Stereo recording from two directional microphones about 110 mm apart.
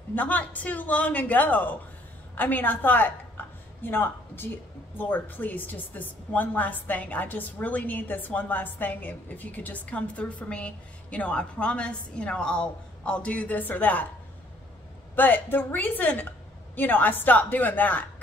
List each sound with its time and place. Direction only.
0.1 s a woman's voice: 15° left (ahead or behind)
15.1 s a woman's voice: 15° left (ahead or behind)